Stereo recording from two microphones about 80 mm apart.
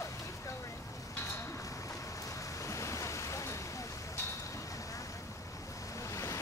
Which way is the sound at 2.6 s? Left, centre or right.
Left.